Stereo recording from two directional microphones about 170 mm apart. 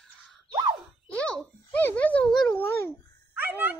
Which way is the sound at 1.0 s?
5° left (ahead or behind).